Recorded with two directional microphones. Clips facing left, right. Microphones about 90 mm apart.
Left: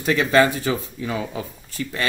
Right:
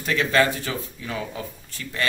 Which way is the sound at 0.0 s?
15° left (ahead or behind).